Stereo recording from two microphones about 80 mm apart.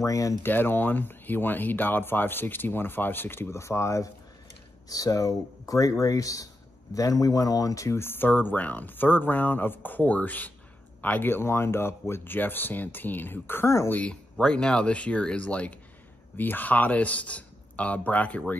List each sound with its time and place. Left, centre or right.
0.0 s speech: left
0.4 s speech: left
4.8 s speech: left
14.3 s speech: centre